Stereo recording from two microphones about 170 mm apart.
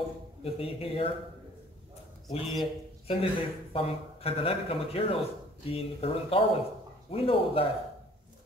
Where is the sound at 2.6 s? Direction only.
35° left (ahead or behind).